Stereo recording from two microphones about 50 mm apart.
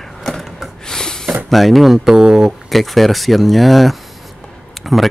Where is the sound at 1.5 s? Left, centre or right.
Centre.